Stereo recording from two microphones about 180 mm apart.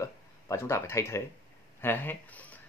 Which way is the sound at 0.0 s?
15° left (ahead or behind).